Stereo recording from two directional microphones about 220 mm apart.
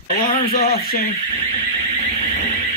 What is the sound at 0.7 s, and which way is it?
Speech, 45° left (ahead or behind).